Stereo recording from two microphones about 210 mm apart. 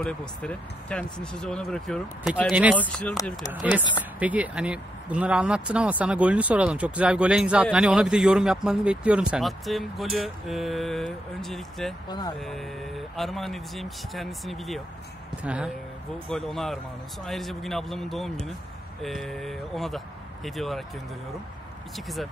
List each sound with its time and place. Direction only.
0.0 s speech: 5° left (ahead or behind)
2.8 s speech: 5° left (ahead or behind)
4.2 s speech: 5° right (ahead or behind)
12.1 s speech: 20° left (ahead or behind)
12.4 s speech: centre (ahead or behind)
21.9 s speech: centre (ahead or behind)